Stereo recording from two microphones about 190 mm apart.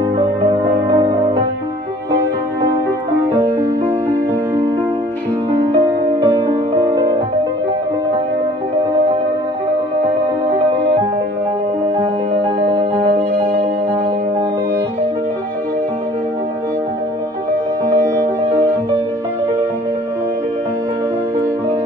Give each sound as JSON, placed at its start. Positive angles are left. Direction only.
{"t": 0.5, "sound": "music", "side_deg": -15}
{"t": 3.4, "sound": "music", "side_deg": -15}
{"t": 6.2, "sound": "music", "side_deg": -25}
{"t": 18.0, "sound": "music", "side_deg": -15}